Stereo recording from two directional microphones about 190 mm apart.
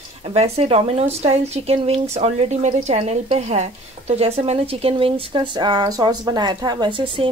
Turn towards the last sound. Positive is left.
turn(degrees=-25)  # may be behind; listen again after turning